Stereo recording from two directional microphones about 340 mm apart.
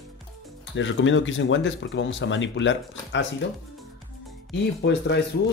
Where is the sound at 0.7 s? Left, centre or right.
Left.